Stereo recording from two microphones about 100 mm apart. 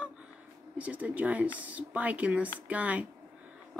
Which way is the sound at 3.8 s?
10° right (ahead or behind).